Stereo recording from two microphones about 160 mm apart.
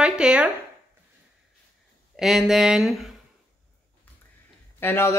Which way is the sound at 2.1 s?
5° right (ahead or behind).